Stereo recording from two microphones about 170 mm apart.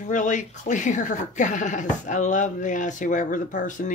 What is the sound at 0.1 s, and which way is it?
Speech, 45° left (ahead or behind).